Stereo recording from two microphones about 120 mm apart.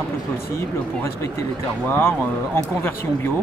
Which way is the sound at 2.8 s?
20° left (ahead or behind).